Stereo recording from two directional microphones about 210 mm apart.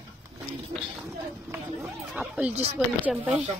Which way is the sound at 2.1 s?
5° right (ahead or behind).